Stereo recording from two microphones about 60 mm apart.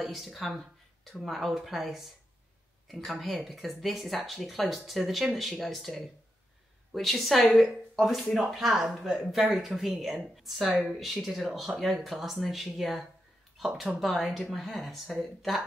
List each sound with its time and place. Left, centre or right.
0.0 s speech: centre